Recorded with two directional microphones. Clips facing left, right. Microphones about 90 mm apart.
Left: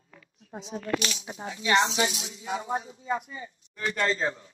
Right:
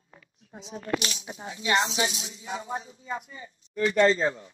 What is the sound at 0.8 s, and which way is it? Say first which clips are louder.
Speech: even; 30° right (ahead or behind).